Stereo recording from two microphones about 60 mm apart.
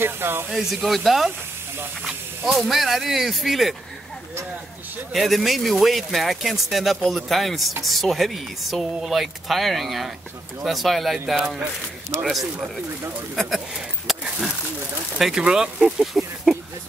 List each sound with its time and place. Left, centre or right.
0.0 s speech: right
0.5 s speech: centre
5.1 s speech: centre
14.1 s a sound: centre
15.1 s speech: centre